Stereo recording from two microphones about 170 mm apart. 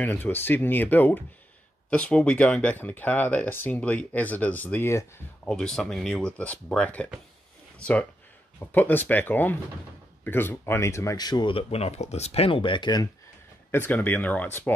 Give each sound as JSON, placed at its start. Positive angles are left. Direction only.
{"t": 0.0, "sound": "speech", "side_deg": 10}
{"t": 13.7, "sound": "speech", "side_deg": 10}